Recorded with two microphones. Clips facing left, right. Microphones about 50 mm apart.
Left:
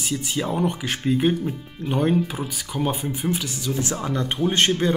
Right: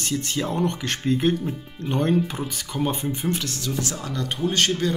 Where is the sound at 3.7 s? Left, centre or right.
Left.